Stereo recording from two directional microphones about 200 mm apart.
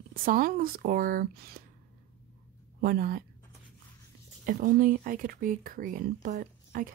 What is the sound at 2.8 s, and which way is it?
Speech, 45° right (ahead or behind).